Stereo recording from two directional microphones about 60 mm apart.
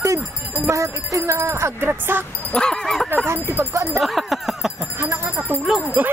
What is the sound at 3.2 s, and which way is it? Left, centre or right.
Speech, right.